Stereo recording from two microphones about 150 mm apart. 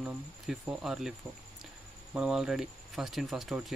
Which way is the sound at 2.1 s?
5° right (ahead or behind).